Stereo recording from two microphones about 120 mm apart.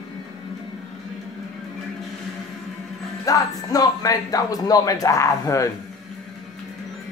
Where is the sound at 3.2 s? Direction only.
30° left (ahead or behind).